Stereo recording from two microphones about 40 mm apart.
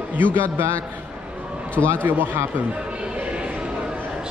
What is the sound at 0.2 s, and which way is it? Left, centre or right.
Speech, right.